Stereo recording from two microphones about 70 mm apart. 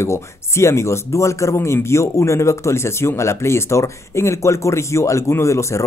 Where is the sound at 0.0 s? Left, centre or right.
Left.